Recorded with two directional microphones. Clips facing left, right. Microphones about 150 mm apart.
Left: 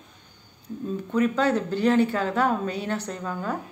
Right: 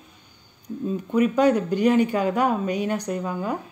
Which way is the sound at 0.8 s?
10° right (ahead or behind).